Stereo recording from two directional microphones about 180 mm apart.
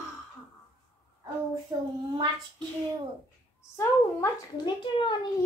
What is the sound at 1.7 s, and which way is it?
Child singing, 20° right (ahead or behind).